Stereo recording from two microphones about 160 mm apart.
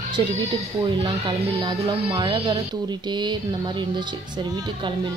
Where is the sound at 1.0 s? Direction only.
30° right (ahead or behind).